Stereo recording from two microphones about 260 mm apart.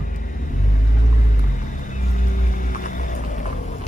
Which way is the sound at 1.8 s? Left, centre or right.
Left.